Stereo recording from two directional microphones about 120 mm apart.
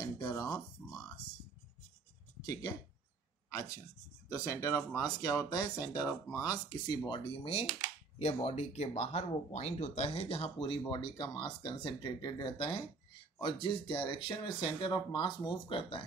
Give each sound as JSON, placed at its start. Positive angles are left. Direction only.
{"t": 0.0, "sound": "a sound", "side_deg": 30}
{"t": 2.4, "sound": "speech", "side_deg": 30}
{"t": 4.3, "sound": "speech", "side_deg": 25}
{"t": 7.1, "sound": "speech", "side_deg": 50}